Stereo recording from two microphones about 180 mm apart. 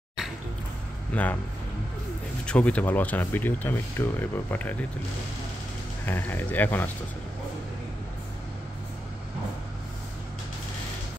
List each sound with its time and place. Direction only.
1.1 s speech: 10° left (ahead or behind)
2.4 s speech: 5° left (ahead or behind)
6.0 s speech: 10° left (ahead or behind)